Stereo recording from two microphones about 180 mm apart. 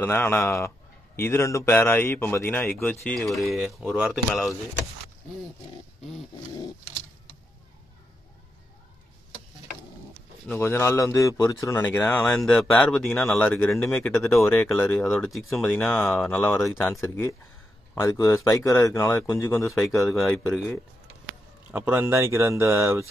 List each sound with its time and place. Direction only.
0.0 s a man's voice: 10° left (ahead or behind)
10.5 s a man's voice: 15° left (ahead or behind)
14.1 s a man's voice: centre (ahead or behind); by 19.4 s 20° left (ahead or behind)
19.5 s speech: centre (ahead or behind)
21.6 s speech: 10° right (ahead or behind)